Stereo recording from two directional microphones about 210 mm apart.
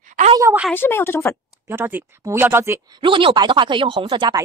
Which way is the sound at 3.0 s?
25° right (ahead or behind).